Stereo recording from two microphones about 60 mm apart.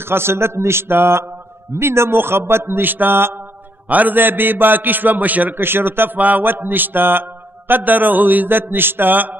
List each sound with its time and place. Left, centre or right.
0.1 s a man's voice: right
5.6 s speech: right